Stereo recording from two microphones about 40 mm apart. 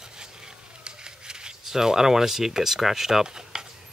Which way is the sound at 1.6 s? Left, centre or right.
Centre.